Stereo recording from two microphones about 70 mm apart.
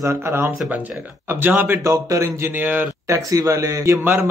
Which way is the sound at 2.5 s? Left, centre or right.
Right.